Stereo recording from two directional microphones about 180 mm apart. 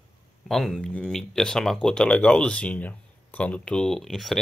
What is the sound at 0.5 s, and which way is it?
Speech, centre (ahead or behind).